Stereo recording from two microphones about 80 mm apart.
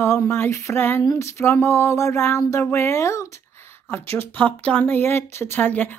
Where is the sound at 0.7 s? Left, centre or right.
Left.